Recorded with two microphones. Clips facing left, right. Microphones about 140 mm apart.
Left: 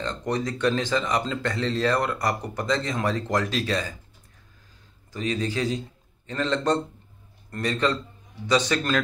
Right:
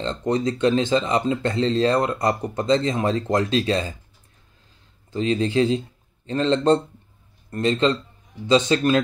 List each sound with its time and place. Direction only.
0.0 s speech: 25° right (ahead or behind)
5.1 s speech: 30° right (ahead or behind)